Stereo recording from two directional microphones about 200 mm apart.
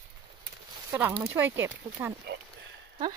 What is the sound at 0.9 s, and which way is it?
Speech, 10° right (ahead or behind).